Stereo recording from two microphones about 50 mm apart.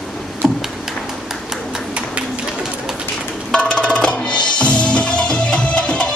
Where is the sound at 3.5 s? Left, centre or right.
Left.